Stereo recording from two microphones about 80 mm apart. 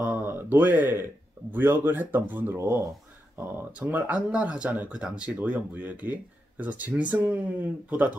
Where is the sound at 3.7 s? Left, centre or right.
Right.